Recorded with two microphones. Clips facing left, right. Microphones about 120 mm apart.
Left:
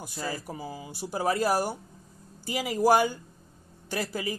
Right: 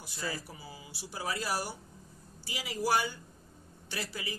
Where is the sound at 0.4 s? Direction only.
45° left (ahead or behind).